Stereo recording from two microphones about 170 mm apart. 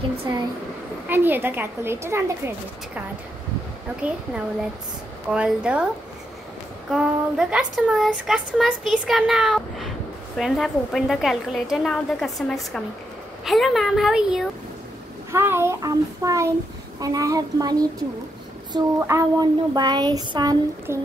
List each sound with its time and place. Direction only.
0.3 s speech: 25° right (ahead or behind)
1.0 s speech: 10° right (ahead or behind)
4.0 s speech: 5° right (ahead or behind)
6.9 s speech: 5° right (ahead or behind)
15.3 s speech: 15° right (ahead or behind)